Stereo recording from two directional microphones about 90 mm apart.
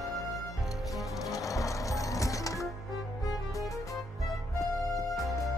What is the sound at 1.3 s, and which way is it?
Music, 35° left (ahead or behind).